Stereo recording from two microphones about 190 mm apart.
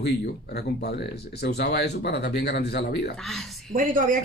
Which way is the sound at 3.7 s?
40° right (ahead or behind).